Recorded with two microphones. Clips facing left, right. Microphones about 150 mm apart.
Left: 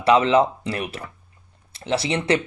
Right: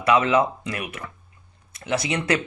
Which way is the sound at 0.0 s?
30° left (ahead or behind).